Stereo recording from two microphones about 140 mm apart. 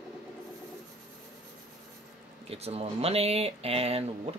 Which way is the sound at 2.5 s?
45° right (ahead or behind).